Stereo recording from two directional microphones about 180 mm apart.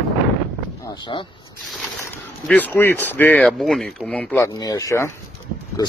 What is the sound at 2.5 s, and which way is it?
Speech, 10° left (ahead or behind).